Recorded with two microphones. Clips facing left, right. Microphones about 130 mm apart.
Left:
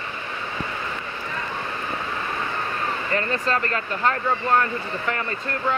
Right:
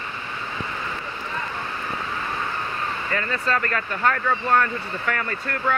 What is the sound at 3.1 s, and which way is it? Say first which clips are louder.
Speech: left 1 dB; 35° left (ahead or behind).